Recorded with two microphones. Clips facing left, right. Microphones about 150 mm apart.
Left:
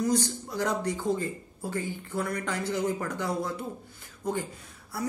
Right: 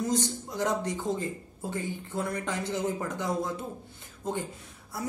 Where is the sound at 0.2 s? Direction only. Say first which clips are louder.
Even; 20° right (ahead or behind).